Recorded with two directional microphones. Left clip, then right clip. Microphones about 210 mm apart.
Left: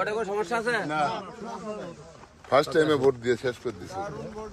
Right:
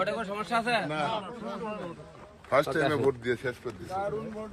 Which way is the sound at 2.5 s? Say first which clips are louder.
Left 4 dB; 55° left (ahead or behind).